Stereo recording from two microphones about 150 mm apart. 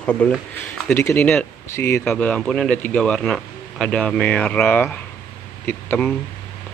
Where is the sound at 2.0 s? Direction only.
5° left (ahead or behind).